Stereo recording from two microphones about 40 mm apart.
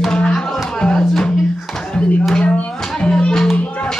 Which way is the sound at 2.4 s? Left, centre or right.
Left.